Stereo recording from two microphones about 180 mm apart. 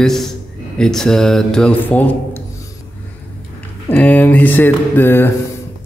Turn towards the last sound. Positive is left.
turn(degrees=10)  # may be behind; listen again after turning